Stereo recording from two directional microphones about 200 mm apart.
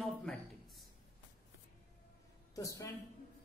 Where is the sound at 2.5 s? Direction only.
15° left (ahead or behind).